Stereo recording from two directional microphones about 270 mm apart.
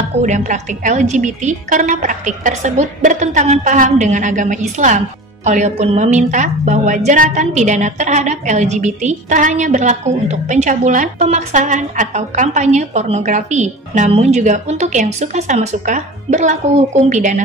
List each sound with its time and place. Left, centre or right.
0.2 s a woman's voice: right